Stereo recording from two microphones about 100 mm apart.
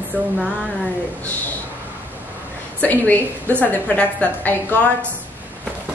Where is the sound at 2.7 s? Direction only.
15° left (ahead or behind).